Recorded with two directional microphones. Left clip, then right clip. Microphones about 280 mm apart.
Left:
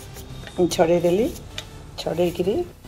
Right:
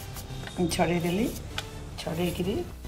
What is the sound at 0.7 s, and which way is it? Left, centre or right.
Speech, left.